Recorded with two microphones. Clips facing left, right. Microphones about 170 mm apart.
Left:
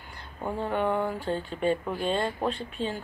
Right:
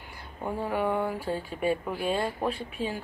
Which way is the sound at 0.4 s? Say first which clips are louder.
Left 1 dB; 5° right (ahead or behind).